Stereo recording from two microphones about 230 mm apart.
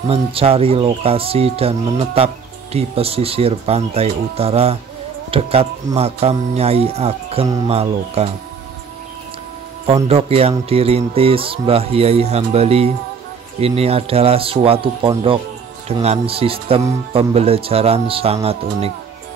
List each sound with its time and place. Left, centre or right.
0.1 s speech: right
7.4 s speech: centre
7.7 s speech: right
10.0 s speech: right